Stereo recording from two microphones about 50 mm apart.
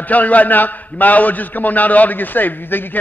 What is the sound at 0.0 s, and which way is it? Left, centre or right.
A man's voice, left.